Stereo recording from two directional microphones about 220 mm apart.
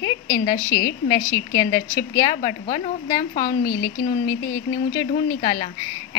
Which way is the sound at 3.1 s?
15° left (ahead or behind).